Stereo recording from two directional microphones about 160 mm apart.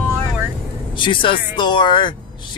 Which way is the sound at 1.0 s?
30° left (ahead or behind).